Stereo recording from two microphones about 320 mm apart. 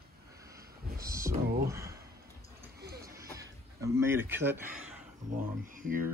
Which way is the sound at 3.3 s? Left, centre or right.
Centre.